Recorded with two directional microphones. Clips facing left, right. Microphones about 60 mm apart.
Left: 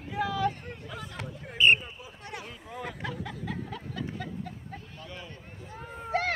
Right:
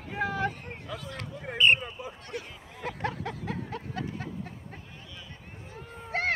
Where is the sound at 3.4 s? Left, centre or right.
Right.